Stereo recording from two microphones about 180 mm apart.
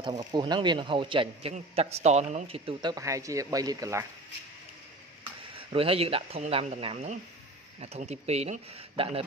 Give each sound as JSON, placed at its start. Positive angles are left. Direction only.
{"t": 0.0, "sound": "a man's voice", "side_deg": -25}
{"t": 5.7, "sound": "speech", "side_deg": -30}